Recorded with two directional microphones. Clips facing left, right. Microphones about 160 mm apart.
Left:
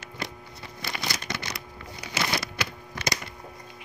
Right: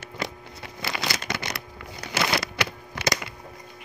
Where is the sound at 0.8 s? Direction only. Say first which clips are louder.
Right 3 dB; 85° right; by 3.3 s 70° right (ahead or behind).